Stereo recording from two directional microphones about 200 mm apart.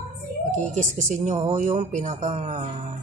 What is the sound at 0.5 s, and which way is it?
Speech, 40° right (ahead or behind).